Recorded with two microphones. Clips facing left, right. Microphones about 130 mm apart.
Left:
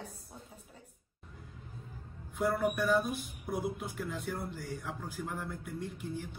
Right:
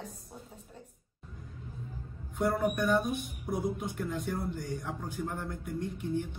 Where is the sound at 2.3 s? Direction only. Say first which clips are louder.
Right 2 dB; 5° left (ahead or behind).